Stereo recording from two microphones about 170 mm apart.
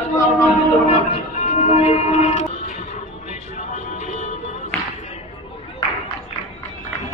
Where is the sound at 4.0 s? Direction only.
45° left (ahead or behind).